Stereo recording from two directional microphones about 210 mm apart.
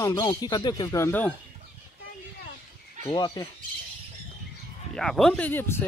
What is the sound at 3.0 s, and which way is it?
Speech, 20° left (ahead or behind).